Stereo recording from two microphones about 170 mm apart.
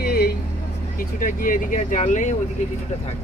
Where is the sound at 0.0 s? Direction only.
70° left (ahead or behind).